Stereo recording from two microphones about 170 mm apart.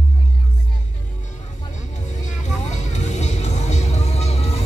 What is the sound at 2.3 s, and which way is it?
Music, 45° left (ahead or behind).